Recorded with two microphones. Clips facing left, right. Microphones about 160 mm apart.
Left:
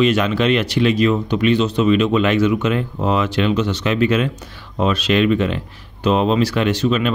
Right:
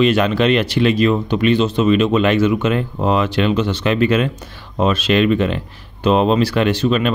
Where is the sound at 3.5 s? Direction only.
30° right (ahead or behind).